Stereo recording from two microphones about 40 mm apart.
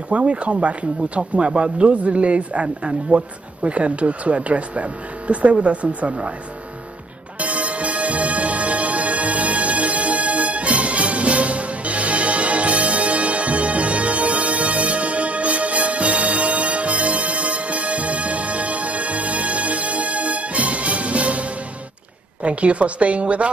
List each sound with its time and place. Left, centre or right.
0.1 s speech: right
7.3 s music: right
22.4 s speech: right